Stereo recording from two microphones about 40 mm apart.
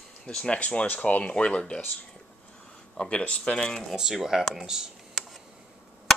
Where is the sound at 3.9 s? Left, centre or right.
Centre.